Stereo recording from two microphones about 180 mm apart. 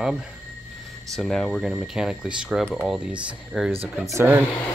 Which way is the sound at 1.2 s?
5° left (ahead or behind).